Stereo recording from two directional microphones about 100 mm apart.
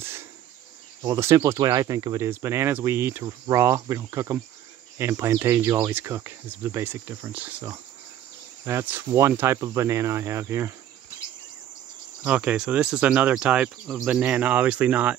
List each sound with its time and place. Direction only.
0.0 s a sound: 25° right (ahead or behind)
1.0 s speech: 35° right (ahead or behind); by 7.5 s 20° right (ahead or behind)
8.6 s speech: 25° right (ahead or behind)
12.3 s speech: 10° right (ahead or behind)